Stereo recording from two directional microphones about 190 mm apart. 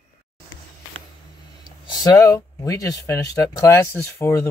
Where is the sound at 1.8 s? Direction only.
20° left (ahead or behind).